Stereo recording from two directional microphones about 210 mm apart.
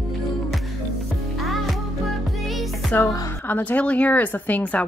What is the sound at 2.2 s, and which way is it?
Music, centre (ahead or behind).